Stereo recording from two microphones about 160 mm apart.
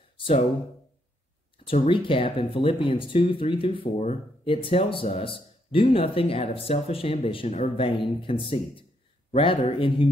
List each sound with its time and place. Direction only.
0.2 s speech: 35° left (ahead or behind)
1.7 s speech: 35° left (ahead or behind)